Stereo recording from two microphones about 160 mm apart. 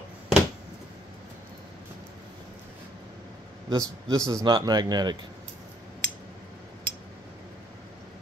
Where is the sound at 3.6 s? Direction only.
20° right (ahead or behind).